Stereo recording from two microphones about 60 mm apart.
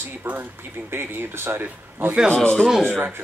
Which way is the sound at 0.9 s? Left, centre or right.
Right.